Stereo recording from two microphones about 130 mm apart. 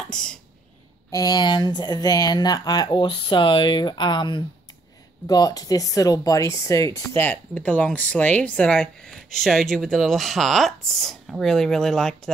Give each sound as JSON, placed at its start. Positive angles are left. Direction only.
{"t": 0.1, "sound": "speech", "side_deg": 5}
{"t": 1.1, "sound": "speech", "side_deg": 30}
{"t": 7.2, "sound": "speech", "side_deg": 10}